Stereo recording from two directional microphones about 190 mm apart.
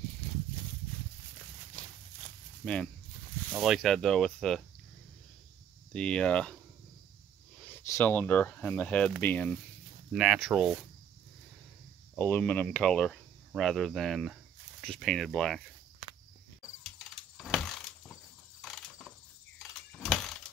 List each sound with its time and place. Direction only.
2.6 s speech: 5° left (ahead or behind)
5.9 s speech: 5° left (ahead or behind)
7.6 s speech: 10° left (ahead or behind)
10.1 s speech: 5° right (ahead or behind)
12.2 s speech: 5° left (ahead or behind)
17.4 s a sound: centre (ahead or behind)
19.7 s vehicle: centre (ahead or behind)